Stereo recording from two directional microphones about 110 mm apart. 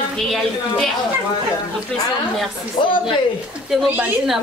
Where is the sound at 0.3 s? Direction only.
Centre (ahead or behind).